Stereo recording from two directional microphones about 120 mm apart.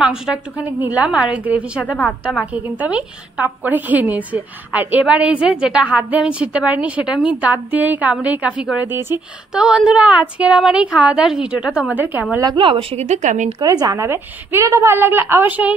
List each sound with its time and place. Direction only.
0.0 s a woman's voice: 5° right (ahead or behind)
9.5 s a woman's voice: 5° right (ahead or behind)
12.4 s speech: 35° right (ahead or behind)
12.6 s speech: 60° right (ahead or behind); by 13.6 s 90° right
13.6 s speech: 35° right (ahead or behind)
14.0 s speech: 20° right (ahead or behind)